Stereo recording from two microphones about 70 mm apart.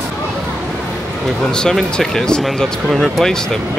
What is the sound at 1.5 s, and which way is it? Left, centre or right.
Speech, centre.